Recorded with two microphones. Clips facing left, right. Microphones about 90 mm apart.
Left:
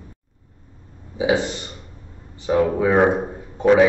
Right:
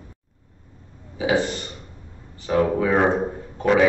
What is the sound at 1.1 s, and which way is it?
A man's voice, 15° left (ahead or behind).